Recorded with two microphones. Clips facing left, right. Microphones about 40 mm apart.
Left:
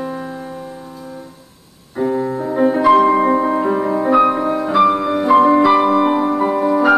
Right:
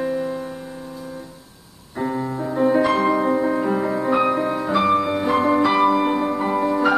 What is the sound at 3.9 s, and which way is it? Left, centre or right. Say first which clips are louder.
Music: left 8 dB; centre.